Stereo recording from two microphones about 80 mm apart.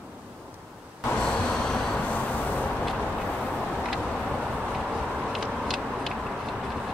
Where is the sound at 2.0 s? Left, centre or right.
Centre.